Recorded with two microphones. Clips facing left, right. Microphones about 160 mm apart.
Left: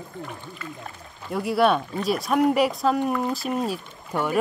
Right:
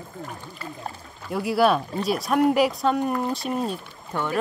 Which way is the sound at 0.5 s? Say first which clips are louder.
Right 2 dB; 35° right (ahead or behind).